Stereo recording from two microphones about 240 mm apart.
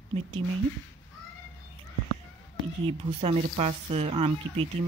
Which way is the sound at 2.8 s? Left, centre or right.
Right.